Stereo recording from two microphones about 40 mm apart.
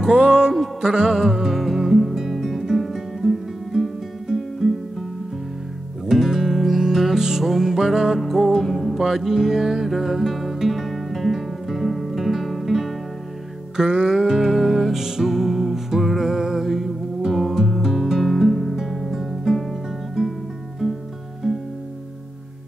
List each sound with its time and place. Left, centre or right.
0.0 s music: centre
4.3 s music: centre
6.0 s music: centre
13.7 s music: centre
20.2 s music: centre
20.8 s music: centre